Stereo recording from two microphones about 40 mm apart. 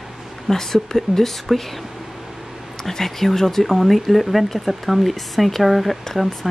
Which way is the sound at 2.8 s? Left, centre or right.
Centre.